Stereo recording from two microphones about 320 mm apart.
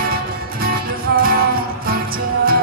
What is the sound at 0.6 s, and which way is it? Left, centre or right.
Music, right.